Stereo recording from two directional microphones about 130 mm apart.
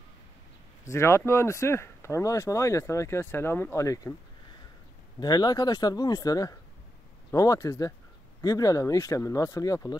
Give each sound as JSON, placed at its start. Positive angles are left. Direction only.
{"t": 0.8, "sound": "speech", "side_deg": 20}
{"t": 5.2, "sound": "speech", "side_deg": 30}